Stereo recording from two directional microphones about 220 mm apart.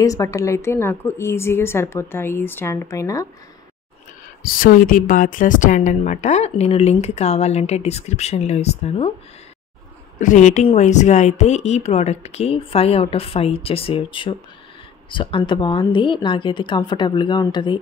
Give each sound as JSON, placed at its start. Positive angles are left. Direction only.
{"t": 0.0, "sound": "speech", "side_deg": 15}
{"t": 4.4, "sound": "a woman's voice", "side_deg": 40}
{"t": 10.1, "sound": "a woman's voice", "side_deg": 35}